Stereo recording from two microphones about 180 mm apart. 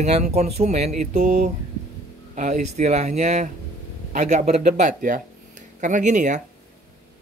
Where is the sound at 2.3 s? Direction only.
40° right (ahead or behind).